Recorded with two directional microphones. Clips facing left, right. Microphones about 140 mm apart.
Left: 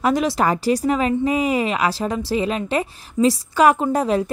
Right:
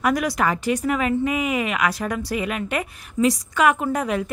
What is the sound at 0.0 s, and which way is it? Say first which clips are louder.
Speech: left 3 dB; 25° left (ahead or behind).